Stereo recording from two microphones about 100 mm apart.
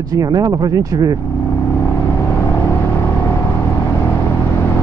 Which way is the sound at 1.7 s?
25° left (ahead or behind).